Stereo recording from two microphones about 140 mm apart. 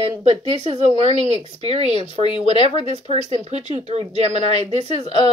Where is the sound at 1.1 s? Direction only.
40° left (ahead or behind).